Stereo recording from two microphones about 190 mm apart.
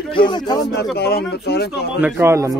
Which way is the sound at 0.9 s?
60° left (ahead or behind).